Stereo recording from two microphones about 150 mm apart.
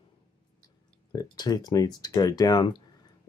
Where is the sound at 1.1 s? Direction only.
25° left (ahead or behind).